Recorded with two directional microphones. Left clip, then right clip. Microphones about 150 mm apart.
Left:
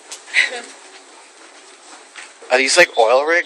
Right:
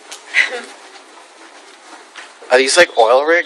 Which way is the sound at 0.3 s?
65° left (ahead or behind).